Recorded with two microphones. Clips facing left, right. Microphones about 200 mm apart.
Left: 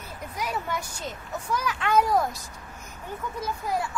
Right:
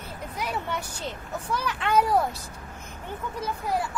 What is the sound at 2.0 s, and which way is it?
Speech, 10° right (ahead or behind).